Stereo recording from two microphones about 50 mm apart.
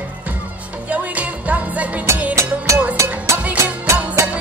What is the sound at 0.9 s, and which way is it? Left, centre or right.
Music, right.